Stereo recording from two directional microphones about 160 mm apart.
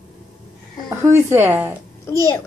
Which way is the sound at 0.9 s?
15° right (ahead or behind).